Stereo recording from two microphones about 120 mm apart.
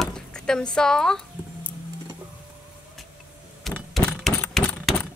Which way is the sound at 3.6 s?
5° left (ahead or behind).